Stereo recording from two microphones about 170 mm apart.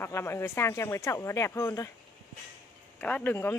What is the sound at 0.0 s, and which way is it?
Speech, 15° left (ahead or behind).